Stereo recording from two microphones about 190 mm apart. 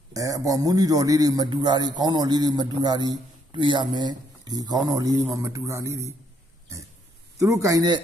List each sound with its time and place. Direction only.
0.1 s a man's voice: 15° right (ahead or behind)
7.3 s a man's voice: 15° right (ahead or behind)